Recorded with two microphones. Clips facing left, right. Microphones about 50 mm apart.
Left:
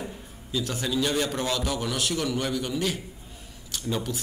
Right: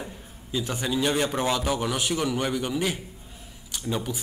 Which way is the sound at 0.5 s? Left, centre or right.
Right.